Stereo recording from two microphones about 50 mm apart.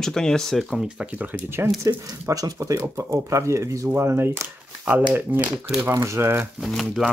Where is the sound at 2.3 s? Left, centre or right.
Right.